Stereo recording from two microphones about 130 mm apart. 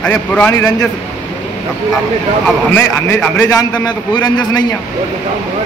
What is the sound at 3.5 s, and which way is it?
A man's voice, 30° left (ahead or behind).